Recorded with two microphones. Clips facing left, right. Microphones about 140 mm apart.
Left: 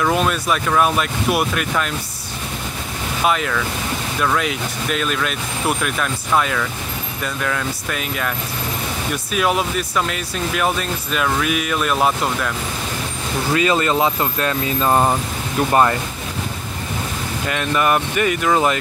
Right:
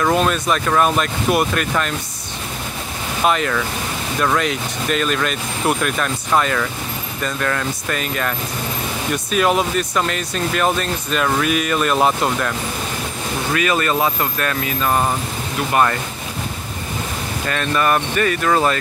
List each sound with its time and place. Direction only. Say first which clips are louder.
0.1 s speech: right 1 dB; 5° left (ahead or behind)
3.3 s speech: right 1 dB; centre (ahead or behind)
13.5 s speech: left 2 dB; 25° left (ahead or behind)
17.5 s speech: even; 15° left (ahead or behind)